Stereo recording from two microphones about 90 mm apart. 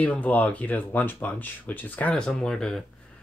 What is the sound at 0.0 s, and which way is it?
Speech, 15° left (ahead or behind).